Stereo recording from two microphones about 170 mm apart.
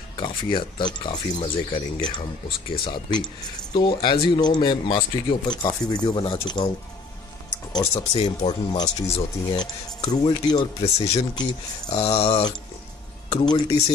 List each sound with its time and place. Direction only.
0.2 s speech: 30° left (ahead or behind)
7.8 s speech: 20° left (ahead or behind); by 13.6 s 35° left (ahead or behind)